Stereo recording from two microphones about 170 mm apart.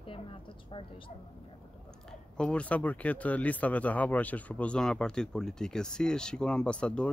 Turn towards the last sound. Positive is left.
turn(degrees=5)  # may be behind; listen again after turning